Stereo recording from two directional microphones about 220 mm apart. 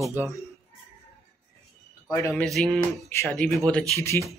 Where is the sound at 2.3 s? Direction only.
Centre (ahead or behind).